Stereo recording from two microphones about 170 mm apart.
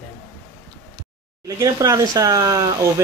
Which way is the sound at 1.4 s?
20° right (ahead or behind).